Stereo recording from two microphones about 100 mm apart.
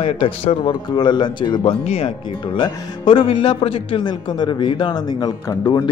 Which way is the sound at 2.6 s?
60° left (ahead or behind).